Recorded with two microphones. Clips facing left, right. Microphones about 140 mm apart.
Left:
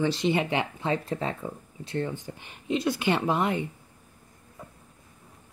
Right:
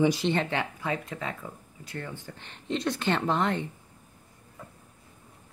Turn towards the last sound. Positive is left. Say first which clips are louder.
# left 1 dB
turn(degrees=10)  # may be behind; listen again after turning